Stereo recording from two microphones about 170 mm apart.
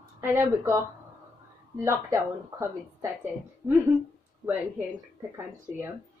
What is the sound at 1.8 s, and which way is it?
A woman's voice, 15° right (ahead or behind).